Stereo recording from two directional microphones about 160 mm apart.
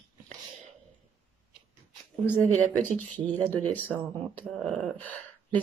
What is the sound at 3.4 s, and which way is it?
Speech, 10° left (ahead or behind).